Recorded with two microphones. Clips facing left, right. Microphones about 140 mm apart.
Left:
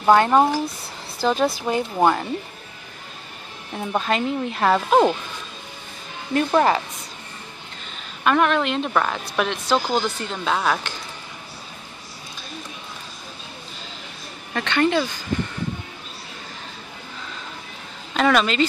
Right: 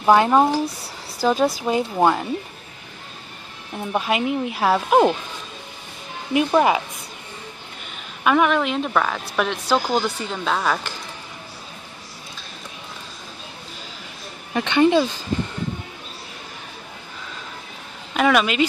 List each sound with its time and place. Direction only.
0.0 s speech: 5° right (ahead or behind)
3.7 s speech: 5° right (ahead or behind)
6.3 s speech: 10° right (ahead or behind)
8.2 s speech: 5° right (ahead or behind)
14.5 s speech: 15° right (ahead or behind)
18.1 s speech: 5° right (ahead or behind)